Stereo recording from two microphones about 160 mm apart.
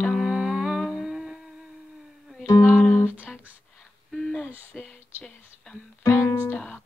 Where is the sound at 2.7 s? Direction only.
15° left (ahead or behind).